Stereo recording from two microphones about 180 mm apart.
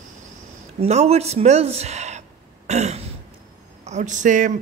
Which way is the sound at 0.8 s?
35° right (ahead or behind).